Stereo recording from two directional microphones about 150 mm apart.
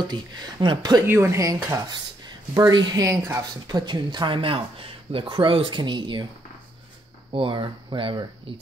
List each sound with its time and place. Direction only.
0.0 s speech: 30° right (ahead or behind)
1.0 s speech: 15° right (ahead or behind); by 6.2 s 30° right (ahead or behind)
7.3 s speech: 35° right (ahead or behind)